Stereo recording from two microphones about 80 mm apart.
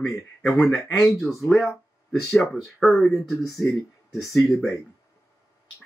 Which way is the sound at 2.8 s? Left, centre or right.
Centre.